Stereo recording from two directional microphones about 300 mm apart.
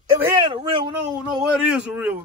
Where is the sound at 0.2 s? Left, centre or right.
Centre.